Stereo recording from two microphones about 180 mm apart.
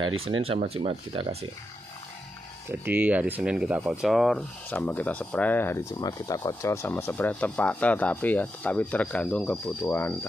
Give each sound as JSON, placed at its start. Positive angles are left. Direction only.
{"t": 0.5, "sound": "speech", "side_deg": -35}
{"t": 2.7, "sound": "speech", "side_deg": -10}